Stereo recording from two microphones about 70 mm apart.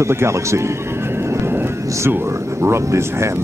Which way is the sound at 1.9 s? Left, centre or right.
Right.